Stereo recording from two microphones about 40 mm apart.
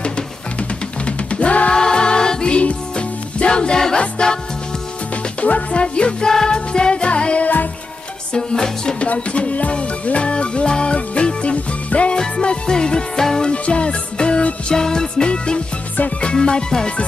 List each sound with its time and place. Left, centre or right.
0.6 s music: left
1.8 s music: centre
2.5 s music: left
5.4 s music: left
8.3 s music: centre
9.0 s music: left; by 13.5 s centre
13.5 s music: left